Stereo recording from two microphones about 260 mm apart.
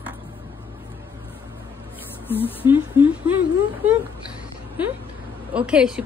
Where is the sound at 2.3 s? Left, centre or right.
Centre.